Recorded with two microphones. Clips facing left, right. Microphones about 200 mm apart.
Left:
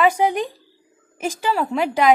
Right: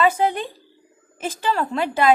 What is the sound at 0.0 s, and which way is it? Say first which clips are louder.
A woman's voice: left 2 dB; 15° left (ahead or behind).